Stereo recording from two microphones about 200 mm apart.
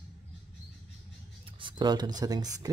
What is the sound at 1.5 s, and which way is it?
Speech, 25° right (ahead or behind).